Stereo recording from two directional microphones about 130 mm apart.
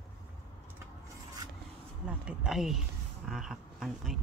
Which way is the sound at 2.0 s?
5° right (ahead or behind).